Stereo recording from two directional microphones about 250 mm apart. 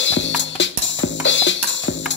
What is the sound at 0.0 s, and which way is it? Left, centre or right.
Music, left.